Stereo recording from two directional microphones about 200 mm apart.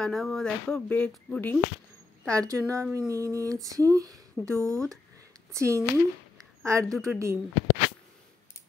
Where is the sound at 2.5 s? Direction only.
15° right (ahead or behind).